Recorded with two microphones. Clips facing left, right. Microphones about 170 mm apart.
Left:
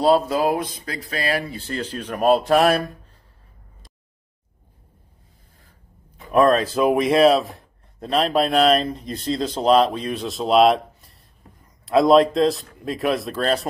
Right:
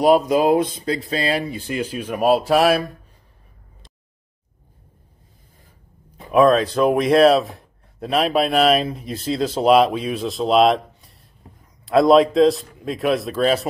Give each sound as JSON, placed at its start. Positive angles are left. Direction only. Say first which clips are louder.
{"t": 0.0, "sound": "speech", "louder": "right 3 dB", "side_deg": -15}
{"t": 6.3, "sound": "a man's voice", "louder": "right 2 dB", "side_deg": 0}